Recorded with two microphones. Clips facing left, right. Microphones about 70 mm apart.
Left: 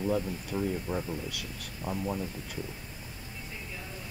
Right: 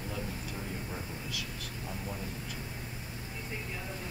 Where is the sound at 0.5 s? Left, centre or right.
Left.